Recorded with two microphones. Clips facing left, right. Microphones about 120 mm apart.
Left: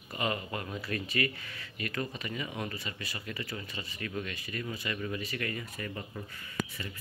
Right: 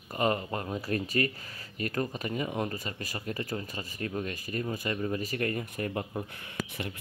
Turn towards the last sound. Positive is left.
turn(degrees=-50)  # may be behind; listen again after turning